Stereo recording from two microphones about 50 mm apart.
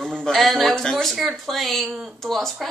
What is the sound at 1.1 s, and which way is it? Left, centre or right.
A woman's voice, centre.